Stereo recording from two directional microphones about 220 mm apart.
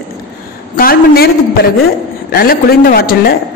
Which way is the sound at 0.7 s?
45° left (ahead or behind).